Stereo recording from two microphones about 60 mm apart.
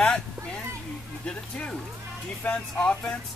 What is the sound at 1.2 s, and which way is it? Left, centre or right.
Speech, centre.